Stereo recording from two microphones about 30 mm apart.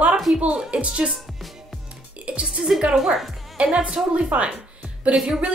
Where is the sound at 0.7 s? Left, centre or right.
Right.